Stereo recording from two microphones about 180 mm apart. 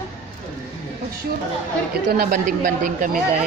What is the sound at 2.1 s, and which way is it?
Speech, 50° right (ahead or behind).